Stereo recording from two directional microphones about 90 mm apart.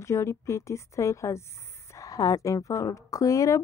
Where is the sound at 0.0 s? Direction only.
30° left (ahead or behind).